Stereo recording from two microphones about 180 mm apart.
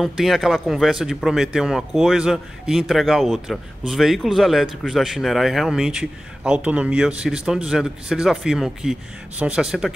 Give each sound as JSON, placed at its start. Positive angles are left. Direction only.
{"t": 0.0, "sound": "a man's voice", "side_deg": 0}